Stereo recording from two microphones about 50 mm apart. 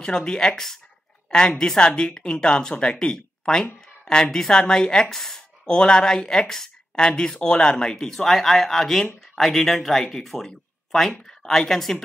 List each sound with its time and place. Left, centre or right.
0.0 s speech: centre
1.8 s speech: centre